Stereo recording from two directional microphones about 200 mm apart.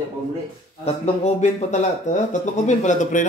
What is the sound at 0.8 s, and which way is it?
Speech, 30° left (ahead or behind).